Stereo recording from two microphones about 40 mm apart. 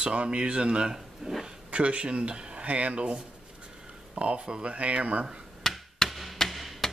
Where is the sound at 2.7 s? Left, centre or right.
Right.